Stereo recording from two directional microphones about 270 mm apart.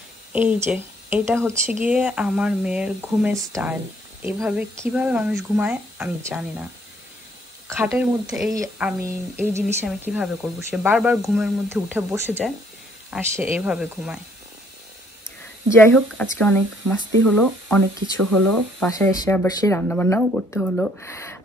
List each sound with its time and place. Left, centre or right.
0.3 s speech: centre
7.7 s speech: centre
8.5 s a sound: centre
9.7 s speech: centre
15.7 s speech: centre
18.2 s speech: right
18.8 s speech: centre